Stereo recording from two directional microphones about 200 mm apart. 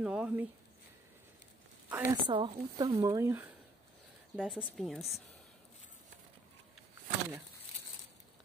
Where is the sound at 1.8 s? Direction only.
10° right (ahead or behind).